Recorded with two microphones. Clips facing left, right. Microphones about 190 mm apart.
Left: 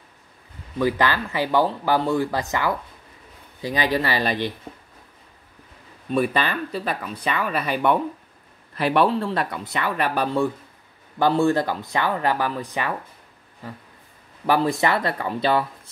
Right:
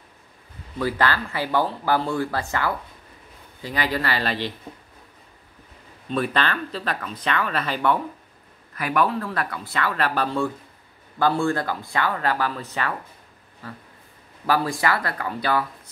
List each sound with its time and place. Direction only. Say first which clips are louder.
0.7 s speech: left 2 dB; 15° left (ahead or behind)
6.0 s speech: left 2 dB; 10° left (ahead or behind)
8.7 s speech: left 3 dB; 30° left (ahead or behind)
14.4 s speech: left 3 dB; 20° left (ahead or behind)